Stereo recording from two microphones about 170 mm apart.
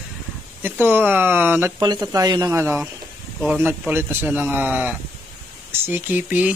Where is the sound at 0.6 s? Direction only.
10° right (ahead or behind).